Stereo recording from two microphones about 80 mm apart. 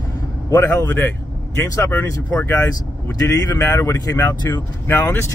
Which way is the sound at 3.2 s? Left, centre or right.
Left.